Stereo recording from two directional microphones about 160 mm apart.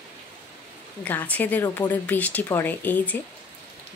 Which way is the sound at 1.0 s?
10° left (ahead or behind).